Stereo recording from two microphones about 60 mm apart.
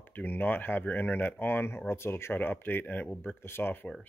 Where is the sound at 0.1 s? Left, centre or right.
Left.